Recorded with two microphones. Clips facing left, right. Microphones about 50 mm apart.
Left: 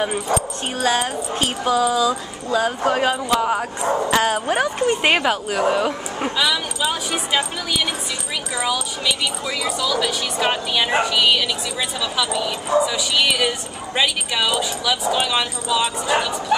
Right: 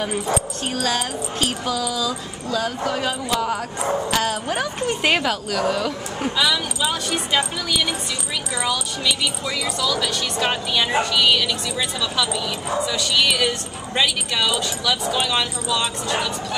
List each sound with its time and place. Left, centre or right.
0.7 s speech: left
3.3 s speech: left
4.8 s speech: centre
6.3 s speech: centre